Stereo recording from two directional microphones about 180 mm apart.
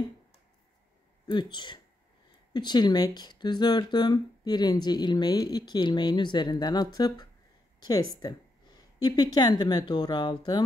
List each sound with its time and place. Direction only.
1.2 s a woman's voice: 25° left (ahead or behind)